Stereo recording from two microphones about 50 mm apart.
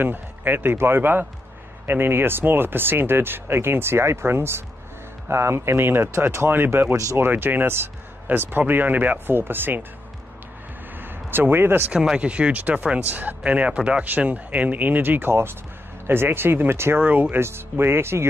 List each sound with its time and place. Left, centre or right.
0.0 s speech: right
6.1 s speech: right
9.3 s speech: right
11.0 s a sound: right
11.9 s speech: centre
13.1 s speech: right
13.4 s speech: right
17.0 s speech: right
17.4 s speech: right